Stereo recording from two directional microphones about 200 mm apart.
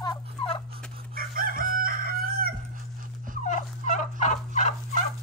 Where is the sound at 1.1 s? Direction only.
45° right (ahead or behind).